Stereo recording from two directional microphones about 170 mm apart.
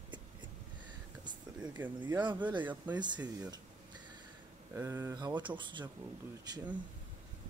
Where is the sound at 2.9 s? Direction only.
25° right (ahead or behind).